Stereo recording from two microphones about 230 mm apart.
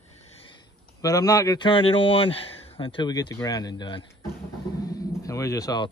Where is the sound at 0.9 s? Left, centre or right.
Centre.